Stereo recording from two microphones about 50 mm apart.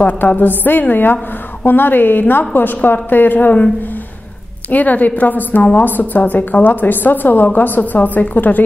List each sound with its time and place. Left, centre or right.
0.0 s a woman's voice: left
4.6 s a woman's voice: left